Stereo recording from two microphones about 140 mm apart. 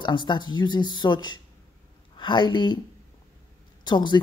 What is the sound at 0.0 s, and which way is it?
A woman's voice, 35° left (ahead or behind).